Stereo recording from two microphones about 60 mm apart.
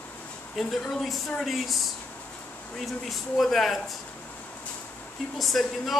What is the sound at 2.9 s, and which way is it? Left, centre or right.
Speech, centre.